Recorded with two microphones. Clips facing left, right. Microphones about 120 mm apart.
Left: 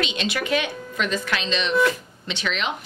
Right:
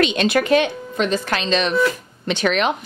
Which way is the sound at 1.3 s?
45° right (ahead or behind).